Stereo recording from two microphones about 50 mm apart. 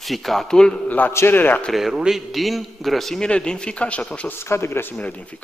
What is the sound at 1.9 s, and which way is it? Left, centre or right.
Speech, centre.